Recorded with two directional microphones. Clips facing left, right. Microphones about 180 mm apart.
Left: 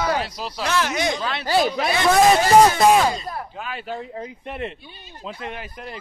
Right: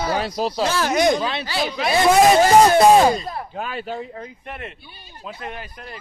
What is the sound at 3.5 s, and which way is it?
Speech, 40° right (ahead or behind).